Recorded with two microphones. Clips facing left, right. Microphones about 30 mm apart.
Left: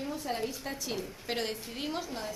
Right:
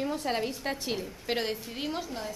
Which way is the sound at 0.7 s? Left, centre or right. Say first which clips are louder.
Right 5 dB; right.